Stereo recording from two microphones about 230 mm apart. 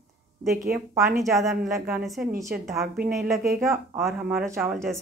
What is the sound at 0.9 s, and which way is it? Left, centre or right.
Speech, centre.